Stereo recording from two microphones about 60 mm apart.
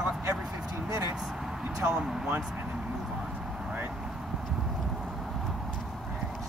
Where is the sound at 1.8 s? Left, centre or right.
Right.